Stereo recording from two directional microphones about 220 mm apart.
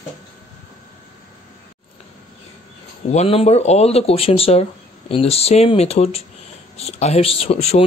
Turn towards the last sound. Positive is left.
turn(degrees=30)  # may be behind; listen again after turning